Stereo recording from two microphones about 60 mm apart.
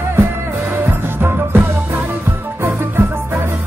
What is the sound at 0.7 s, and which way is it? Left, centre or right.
Music, right.